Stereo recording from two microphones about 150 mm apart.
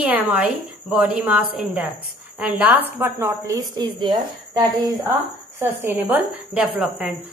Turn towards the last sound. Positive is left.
turn(degrees=-5)  # may be behind; listen again after turning